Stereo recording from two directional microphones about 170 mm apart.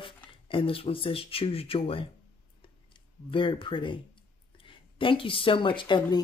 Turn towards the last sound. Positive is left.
turn(degrees=25)  # may be behind; listen again after turning